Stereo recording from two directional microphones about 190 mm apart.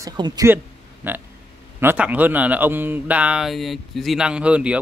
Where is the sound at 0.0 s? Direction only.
20° right (ahead or behind).